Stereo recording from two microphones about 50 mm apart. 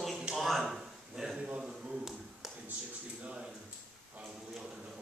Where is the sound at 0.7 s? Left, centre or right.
Centre.